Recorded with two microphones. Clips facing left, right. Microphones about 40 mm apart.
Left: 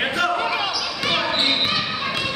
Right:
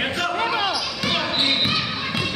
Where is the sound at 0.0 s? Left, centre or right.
Centre.